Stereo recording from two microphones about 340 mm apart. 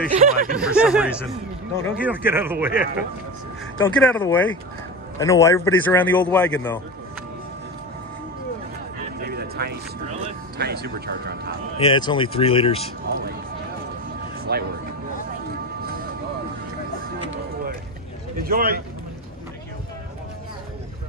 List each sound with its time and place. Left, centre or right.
0.1 s a man's voice: right
0.6 s a man's voice: centre
1.8 s speech: left
2.0 s a man's voice: centre
3.8 s a man's voice: centre
9.3 s music: right
10.6 s a man's voice: right
11.8 s speech: centre
14.5 s a man's voice: right
18.4 s a man's voice: right